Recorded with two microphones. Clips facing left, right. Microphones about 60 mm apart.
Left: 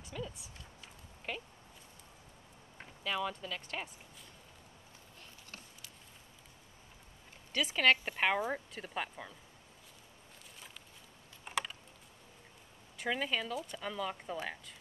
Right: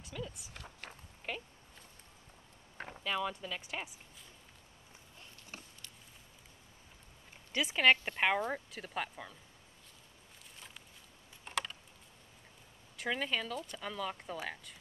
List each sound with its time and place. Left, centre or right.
0.0 s speech: centre
0.6 s a sound: right
1.3 s speech: centre
3.0 s speech: centre
7.5 s speech: centre
11.4 s typing: centre
12.9 s speech: centre